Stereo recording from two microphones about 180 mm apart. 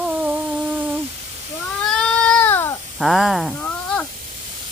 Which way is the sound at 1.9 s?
5° left (ahead or behind).